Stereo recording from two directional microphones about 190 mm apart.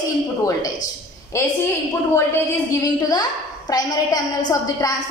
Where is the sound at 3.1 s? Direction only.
20° left (ahead or behind).